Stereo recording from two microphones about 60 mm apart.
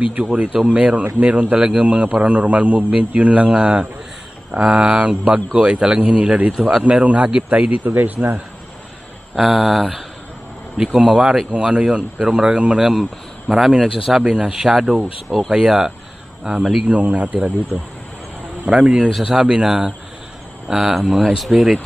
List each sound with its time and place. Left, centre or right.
0.0 s a man's voice: centre
9.3 s speech: centre
10.8 s a man's voice: centre
18.7 s speech: centre